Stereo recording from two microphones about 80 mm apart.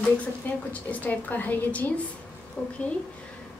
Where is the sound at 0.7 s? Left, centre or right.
Centre.